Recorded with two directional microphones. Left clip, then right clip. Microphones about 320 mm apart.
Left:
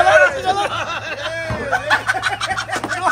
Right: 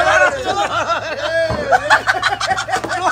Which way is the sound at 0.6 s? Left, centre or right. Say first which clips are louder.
Right 4 dB; right.